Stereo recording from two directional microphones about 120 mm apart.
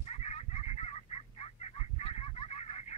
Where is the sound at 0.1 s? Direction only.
60° left (ahead or behind).